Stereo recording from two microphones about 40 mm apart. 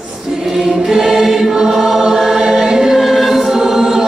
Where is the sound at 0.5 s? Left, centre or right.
Centre.